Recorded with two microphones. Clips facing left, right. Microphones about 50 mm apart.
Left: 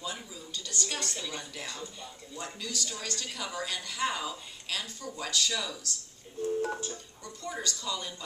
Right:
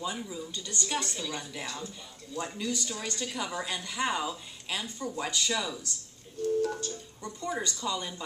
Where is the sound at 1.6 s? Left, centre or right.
Centre.